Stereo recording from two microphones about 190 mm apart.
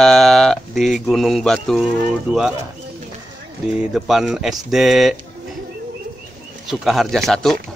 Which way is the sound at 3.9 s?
Centre (ahead or behind).